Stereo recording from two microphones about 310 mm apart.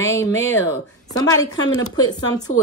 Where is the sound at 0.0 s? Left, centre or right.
Centre.